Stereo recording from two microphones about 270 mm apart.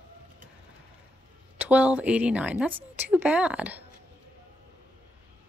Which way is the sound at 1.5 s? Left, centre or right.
Centre.